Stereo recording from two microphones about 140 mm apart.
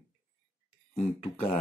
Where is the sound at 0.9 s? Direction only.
45° left (ahead or behind).